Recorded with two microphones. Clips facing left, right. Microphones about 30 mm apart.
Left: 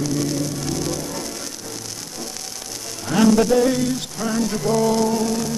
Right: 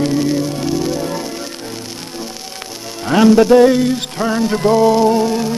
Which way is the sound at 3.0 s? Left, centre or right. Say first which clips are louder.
Right 6 dB; right.